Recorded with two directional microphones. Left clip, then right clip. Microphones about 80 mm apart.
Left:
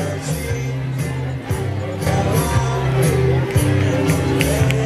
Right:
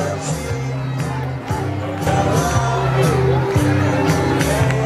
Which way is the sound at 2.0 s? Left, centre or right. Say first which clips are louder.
Right 3 dB; left.